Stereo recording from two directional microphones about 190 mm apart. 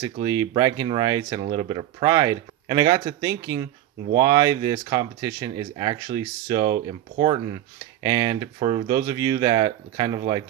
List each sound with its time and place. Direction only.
0.0 s speech: 20° right (ahead or behind)